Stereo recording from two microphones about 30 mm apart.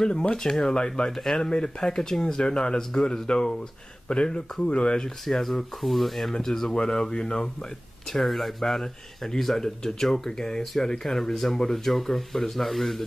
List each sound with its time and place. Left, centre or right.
0.1 s speech: left
0.4 s speech: centre
0.7 s speech: left
2.4 s speech: left
5.2 s speech: centre
6.7 s speech: left
8.1 s speech: centre